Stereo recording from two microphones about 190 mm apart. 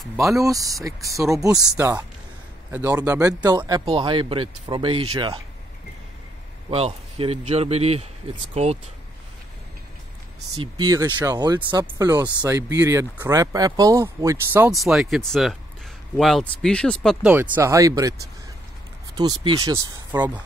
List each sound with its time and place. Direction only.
0.2 s speech: 15° right (ahead or behind)
6.7 s a man's voice: 30° right (ahead or behind)
10.6 s speech: 20° right (ahead or behind)
14.7 s speech: centre (ahead or behind)
17.3 s speech: 10° right (ahead or behind)
19.1 s speech: 20° right (ahead or behind)